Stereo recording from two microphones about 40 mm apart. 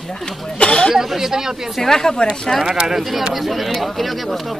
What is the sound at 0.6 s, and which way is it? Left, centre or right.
Speech, left.